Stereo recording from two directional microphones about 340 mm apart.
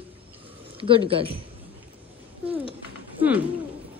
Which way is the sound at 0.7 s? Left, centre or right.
Centre.